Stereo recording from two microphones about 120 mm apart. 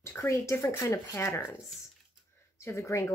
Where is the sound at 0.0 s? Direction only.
20° left (ahead or behind).